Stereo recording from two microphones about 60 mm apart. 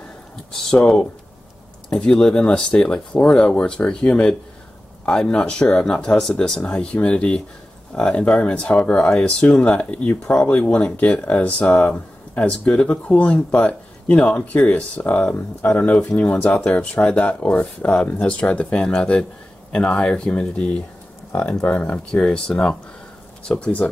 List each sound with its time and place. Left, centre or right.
0.5 s speech: centre
1.9 s speech: centre